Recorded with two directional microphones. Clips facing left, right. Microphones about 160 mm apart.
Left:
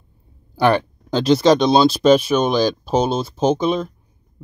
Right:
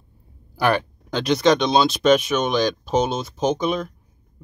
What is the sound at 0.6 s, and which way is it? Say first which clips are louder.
Speech: left 4 dB; 25° left (ahead or behind).